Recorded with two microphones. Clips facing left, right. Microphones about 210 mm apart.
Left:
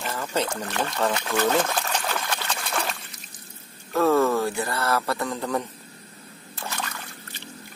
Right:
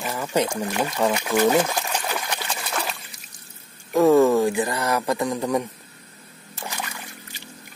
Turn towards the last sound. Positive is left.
turn(degrees=-10)  # may be behind; listen again after turning